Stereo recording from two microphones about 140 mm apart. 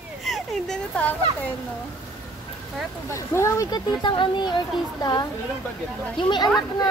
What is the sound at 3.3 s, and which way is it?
Speech, 20° left (ahead or behind).